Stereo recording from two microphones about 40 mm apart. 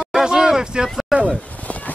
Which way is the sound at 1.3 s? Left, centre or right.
Left.